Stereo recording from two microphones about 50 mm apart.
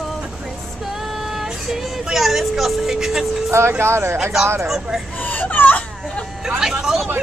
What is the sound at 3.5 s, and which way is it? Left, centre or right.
Speech, right.